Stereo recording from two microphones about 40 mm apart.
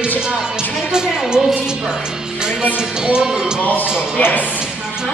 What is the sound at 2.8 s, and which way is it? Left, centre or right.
Music, right.